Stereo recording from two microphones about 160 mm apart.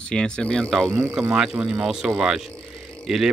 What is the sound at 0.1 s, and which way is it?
Speech, 5° left (ahead or behind).